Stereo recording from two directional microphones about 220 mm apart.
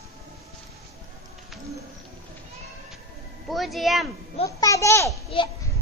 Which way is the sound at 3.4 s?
Centre (ahead or behind).